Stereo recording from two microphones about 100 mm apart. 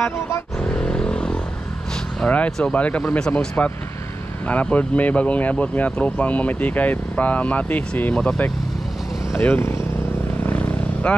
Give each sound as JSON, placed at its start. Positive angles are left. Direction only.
{"t": 0.6, "sound": "vehicle", "side_deg": 10}
{"t": 2.2, "sound": "speech", "side_deg": 15}
{"t": 9.3, "sound": "speech", "side_deg": 20}
{"t": 10.4, "sound": "vehicle", "side_deg": 15}